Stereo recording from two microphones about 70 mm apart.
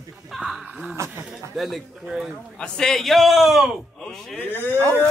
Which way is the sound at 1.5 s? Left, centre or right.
Centre.